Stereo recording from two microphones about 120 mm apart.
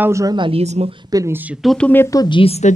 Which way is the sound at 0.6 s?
65° right (ahead or behind).